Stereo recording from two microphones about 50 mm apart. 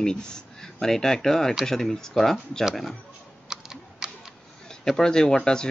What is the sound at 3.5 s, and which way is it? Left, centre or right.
Computer keyboard, centre.